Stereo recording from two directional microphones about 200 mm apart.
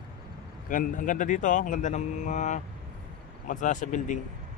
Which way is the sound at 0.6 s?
40° left (ahead or behind).